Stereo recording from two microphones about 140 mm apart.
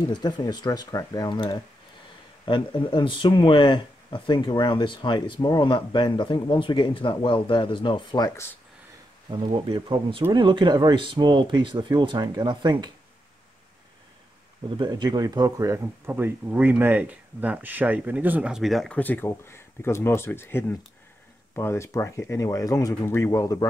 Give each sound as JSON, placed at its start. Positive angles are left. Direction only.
{"t": 0.1, "sound": "speech", "side_deg": 30}
{"t": 9.3, "sound": "speech", "side_deg": -35}
{"t": 14.8, "sound": "speech", "side_deg": -35}